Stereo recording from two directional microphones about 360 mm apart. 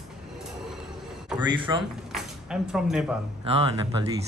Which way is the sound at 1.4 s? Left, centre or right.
Centre.